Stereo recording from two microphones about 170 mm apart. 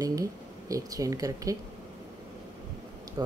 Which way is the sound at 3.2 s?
20° right (ahead or behind).